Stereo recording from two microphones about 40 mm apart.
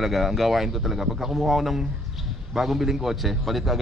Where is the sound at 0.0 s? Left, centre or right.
Centre.